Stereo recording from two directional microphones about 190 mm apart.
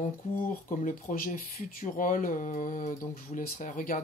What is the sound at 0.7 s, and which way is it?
Speech, 45° left (ahead or behind).